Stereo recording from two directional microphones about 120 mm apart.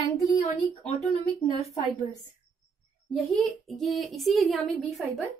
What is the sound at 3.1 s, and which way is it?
A woman's voice, centre (ahead or behind).